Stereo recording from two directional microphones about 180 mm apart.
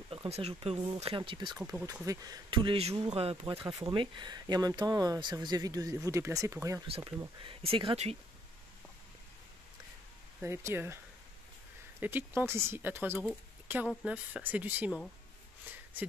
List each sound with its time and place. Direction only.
0.1 s speech: 30° right (ahead or behind)
10.4 s speech: 15° right (ahead or behind)
12.0 s speech: 10° right (ahead or behind)